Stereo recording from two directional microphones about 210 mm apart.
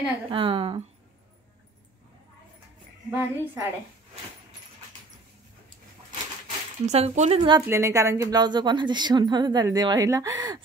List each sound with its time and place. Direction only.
0.3 s a woman's voice: 25° right (ahead or behind)
3.1 s a woman's voice: 10° right (ahead or behind)
6.4 s a woman's voice: 30° right (ahead or behind)